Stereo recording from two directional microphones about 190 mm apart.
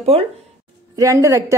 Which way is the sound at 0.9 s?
15° right (ahead or behind).